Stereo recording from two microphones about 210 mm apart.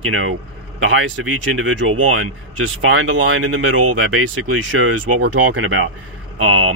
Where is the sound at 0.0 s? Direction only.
75° right (ahead or behind).